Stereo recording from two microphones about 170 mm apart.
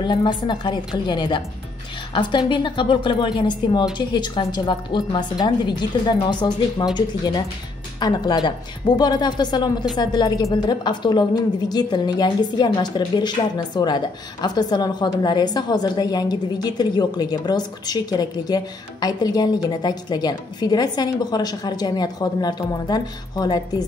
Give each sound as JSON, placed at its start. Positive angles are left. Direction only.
{"t": 0.0, "sound": "a woman's voice", "side_deg": 25}